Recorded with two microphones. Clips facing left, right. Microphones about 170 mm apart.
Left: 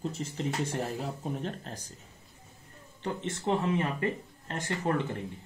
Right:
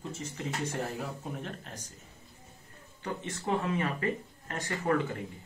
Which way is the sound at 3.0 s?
25° left (ahead or behind).